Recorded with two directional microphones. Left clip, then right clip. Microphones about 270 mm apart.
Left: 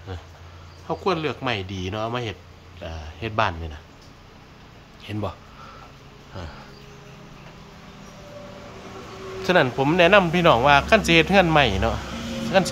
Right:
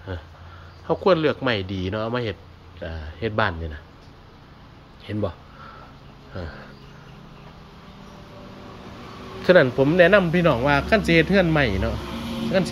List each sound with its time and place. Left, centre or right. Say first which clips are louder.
0.8 s speech: right 5 dB; centre
5.1 s speech: right 3 dB; centre
6.4 s speech: right 3 dB; centre
9.4 s speech: right 3 dB; centre